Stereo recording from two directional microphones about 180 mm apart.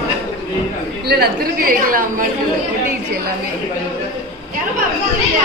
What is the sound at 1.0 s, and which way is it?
A woman's voice, 60° right (ahead or behind).